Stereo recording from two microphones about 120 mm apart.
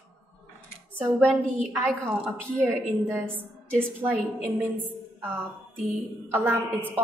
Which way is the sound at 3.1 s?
20° right (ahead or behind).